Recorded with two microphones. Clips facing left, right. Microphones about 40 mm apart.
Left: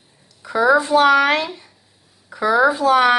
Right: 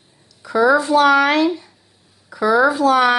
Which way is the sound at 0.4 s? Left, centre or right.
Left.